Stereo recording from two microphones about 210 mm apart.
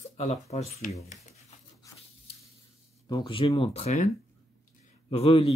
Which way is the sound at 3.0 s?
25° left (ahead or behind).